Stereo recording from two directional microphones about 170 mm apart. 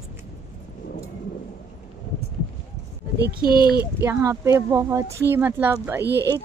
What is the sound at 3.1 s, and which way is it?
Speech, 65° right (ahead or behind).